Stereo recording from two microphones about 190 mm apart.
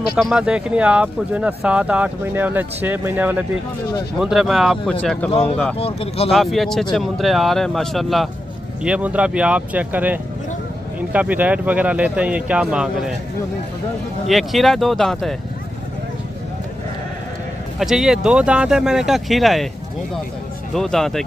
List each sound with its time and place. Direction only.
0.2 s speech: 5° right (ahead or behind)
5.8 s speech: 30° left (ahead or behind)
6.3 s speech: centre (ahead or behind)
14.2 s speech: centre (ahead or behind)
17.7 s speech: 5° right (ahead or behind)
20.7 s speech: centre (ahead or behind)